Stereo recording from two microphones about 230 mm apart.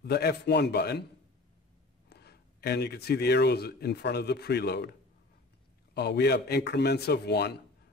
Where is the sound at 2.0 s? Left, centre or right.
Left.